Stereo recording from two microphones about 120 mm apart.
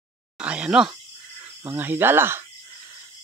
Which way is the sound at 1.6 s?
20° right (ahead or behind).